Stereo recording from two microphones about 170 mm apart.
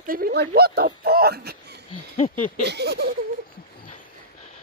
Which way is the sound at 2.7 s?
75° right (ahead or behind).